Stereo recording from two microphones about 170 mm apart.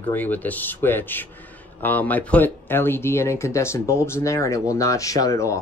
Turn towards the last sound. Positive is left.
turn(degrees=15)  # may be behind; listen again after turning